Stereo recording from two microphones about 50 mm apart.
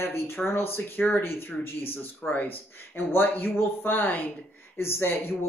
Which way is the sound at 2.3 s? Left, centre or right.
Left.